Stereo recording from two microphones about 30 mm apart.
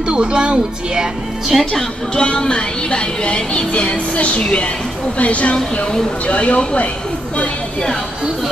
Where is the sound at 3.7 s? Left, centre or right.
Left.